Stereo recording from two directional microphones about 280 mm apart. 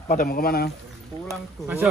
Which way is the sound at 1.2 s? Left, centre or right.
Centre.